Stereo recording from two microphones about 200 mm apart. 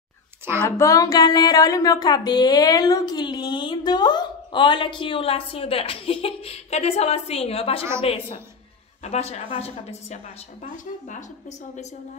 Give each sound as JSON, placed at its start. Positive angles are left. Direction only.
{"t": 0.7, "sound": "a woman's voice", "side_deg": 15}